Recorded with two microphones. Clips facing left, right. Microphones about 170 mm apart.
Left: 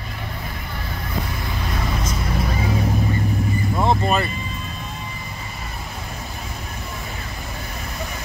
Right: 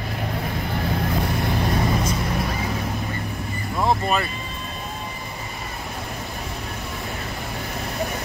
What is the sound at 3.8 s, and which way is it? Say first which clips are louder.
Vehicle: left 1 dB; centre (ahead or behind).